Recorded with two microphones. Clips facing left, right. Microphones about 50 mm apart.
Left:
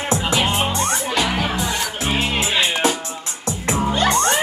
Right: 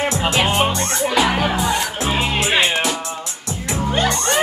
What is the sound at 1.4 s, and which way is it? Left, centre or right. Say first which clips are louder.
Music: right 3 dB; centre.